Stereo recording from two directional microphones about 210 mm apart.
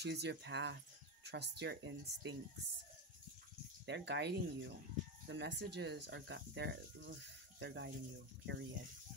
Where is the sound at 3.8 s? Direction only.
55° right (ahead or behind).